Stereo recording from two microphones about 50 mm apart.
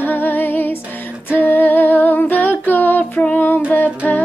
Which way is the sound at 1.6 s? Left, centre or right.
Left.